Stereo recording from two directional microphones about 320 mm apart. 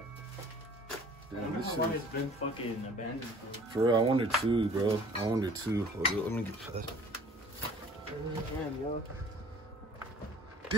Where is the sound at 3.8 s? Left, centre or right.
Centre.